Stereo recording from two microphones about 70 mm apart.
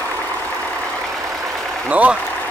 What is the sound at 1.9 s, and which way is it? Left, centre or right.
Speech, right.